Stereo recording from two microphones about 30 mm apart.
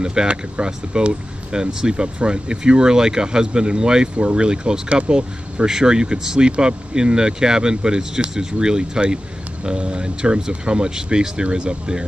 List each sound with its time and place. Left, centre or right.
0.0 s speech: right